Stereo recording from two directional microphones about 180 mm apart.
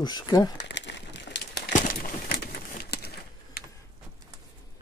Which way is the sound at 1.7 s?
45° left (ahead or behind).